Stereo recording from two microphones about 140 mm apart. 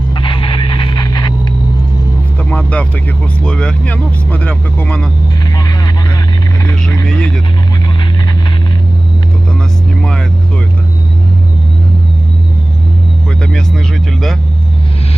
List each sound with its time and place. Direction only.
0.1 s vehicle: 35° left (ahead or behind)
2.5 s vehicle: 10° left (ahead or behind)
3.4 s speech: 10° left (ahead or behind)